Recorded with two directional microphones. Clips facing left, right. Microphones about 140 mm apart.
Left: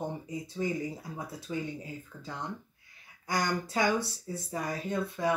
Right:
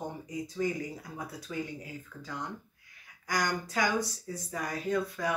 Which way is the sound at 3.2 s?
25° left (ahead or behind).